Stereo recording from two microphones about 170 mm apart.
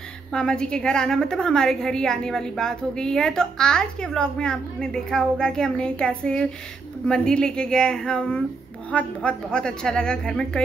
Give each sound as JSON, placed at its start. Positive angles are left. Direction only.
{"t": 0.3, "sound": "a woman's voice", "side_deg": 5}